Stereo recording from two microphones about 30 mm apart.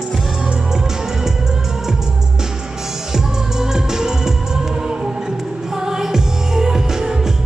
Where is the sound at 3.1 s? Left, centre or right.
Centre.